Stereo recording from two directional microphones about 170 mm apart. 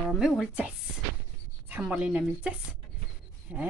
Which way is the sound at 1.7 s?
5° right (ahead or behind).